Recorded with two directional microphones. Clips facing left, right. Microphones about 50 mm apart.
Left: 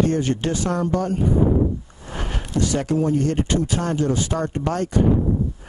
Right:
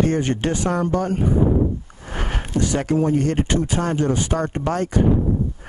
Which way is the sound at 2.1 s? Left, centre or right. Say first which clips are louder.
Right 1 dB; right.